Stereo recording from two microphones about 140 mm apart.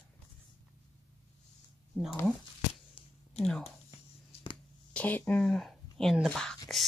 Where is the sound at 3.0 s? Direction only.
40° left (ahead or behind).